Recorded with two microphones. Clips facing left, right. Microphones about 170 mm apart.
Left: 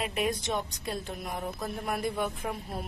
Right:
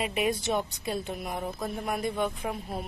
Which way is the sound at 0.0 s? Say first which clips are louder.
Right 2 dB; centre (ahead or behind).